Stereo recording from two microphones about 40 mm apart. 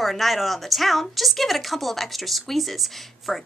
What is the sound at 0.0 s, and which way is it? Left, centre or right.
Speech, centre.